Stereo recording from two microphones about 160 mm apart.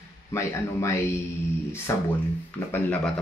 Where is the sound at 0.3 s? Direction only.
15° left (ahead or behind).